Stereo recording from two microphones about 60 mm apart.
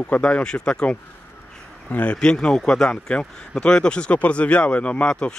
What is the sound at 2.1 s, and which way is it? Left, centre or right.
Speech, centre.